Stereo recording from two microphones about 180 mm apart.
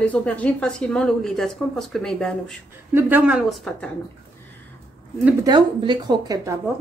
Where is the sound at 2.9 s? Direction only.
10° right (ahead or behind).